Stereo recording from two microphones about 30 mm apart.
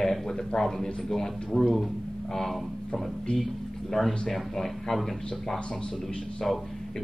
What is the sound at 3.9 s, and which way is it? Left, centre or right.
Speech, centre.